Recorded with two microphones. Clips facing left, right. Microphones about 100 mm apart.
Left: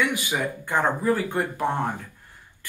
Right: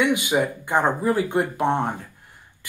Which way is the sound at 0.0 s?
20° right (ahead or behind).